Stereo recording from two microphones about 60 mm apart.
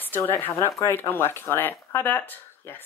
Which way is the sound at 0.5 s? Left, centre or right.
Left.